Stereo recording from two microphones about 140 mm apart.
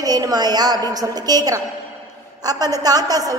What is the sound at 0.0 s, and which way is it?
A woman's voice, 25° right (ahead or behind).